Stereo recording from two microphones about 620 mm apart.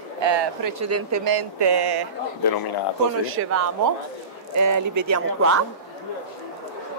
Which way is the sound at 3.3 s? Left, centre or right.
Right.